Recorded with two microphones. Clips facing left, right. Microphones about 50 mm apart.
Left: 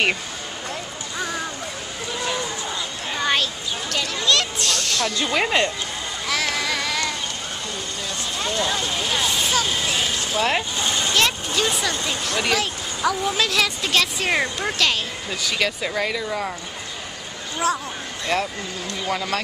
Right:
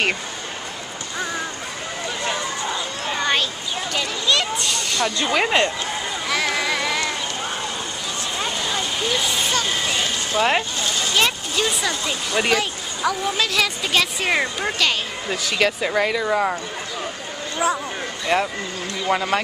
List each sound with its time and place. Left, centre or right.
3.1 s a sound: centre
8.4 s vehicle: centre
8.6 s a sound: centre
11.1 s speech: centre
15.2 s speech: centre
16.2 s speech: right
17.6 s speech: centre
18.3 s speech: right